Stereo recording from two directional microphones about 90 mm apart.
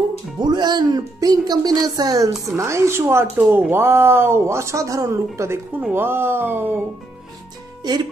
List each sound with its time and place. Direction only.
0.4 s a woman's voice: 50° right (ahead or behind); by 6.8 s 25° right (ahead or behind)
7.8 s speech: 50° right (ahead or behind)